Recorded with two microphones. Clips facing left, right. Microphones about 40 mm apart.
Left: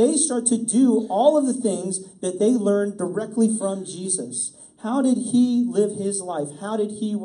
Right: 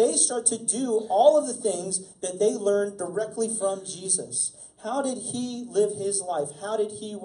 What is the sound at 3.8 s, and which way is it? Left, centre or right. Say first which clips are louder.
Speech: left 5 dB; left.